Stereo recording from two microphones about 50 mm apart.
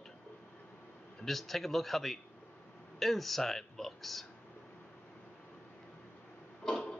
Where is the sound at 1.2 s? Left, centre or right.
Centre.